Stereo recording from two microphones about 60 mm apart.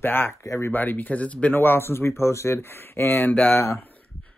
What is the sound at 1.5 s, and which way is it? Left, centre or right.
Speech, left.